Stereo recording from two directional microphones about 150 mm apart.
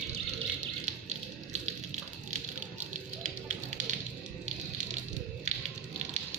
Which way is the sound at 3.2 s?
55° right (ahead or behind).